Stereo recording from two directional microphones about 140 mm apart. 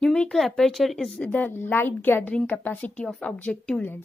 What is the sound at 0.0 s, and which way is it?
Speech, 5° left (ahead or behind).